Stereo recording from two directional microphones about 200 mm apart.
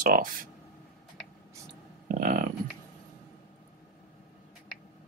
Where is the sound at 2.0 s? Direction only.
45° right (ahead or behind).